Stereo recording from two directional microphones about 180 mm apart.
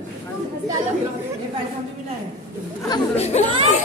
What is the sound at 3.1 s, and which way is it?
Chatter, 35° left (ahead or behind).